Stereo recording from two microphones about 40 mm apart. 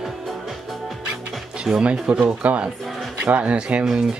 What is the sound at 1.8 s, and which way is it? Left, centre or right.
Speech, right.